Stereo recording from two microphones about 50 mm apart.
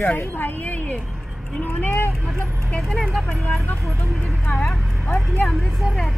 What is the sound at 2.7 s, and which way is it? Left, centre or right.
Speech, left.